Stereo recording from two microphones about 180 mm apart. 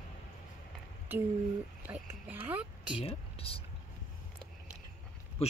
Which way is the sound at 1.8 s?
10° right (ahead or behind).